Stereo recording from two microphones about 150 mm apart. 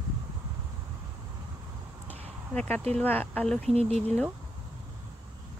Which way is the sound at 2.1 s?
10° left (ahead or behind).